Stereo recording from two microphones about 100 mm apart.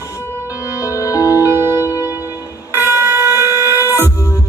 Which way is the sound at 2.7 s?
25° right (ahead or behind).